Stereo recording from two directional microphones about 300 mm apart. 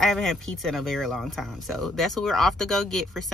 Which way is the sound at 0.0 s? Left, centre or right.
Centre.